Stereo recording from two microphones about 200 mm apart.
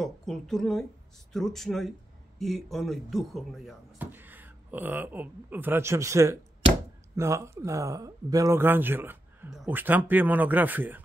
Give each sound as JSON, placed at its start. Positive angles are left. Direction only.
{"t": 0.0, "sound": "a woman's voice", "side_deg": 0}